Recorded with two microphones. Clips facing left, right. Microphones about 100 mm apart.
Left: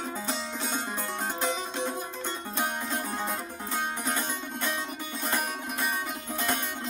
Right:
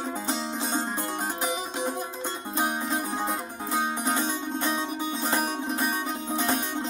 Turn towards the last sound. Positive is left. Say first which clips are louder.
# right 4 dB
turn(degrees=-20)  # may be behind; listen again after turning